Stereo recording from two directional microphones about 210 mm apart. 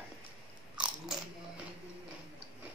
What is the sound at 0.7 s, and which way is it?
Biting, 5° right (ahead or behind).